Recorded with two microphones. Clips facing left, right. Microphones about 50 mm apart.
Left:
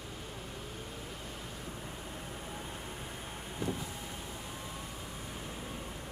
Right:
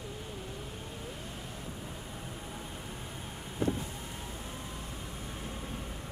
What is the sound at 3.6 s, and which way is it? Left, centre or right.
Vehicle, right.